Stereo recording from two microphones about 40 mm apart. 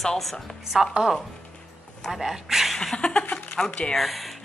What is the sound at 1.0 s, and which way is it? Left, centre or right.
A woman's voice, centre.